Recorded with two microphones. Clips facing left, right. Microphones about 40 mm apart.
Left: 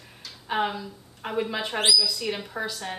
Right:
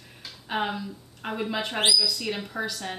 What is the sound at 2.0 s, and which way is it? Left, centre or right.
Speech, centre.